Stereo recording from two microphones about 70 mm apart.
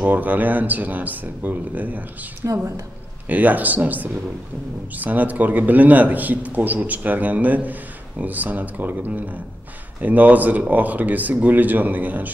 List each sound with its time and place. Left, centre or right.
0.0 s a man's voice: right
2.4 s a woman's voice: right
3.3 s a man's voice: right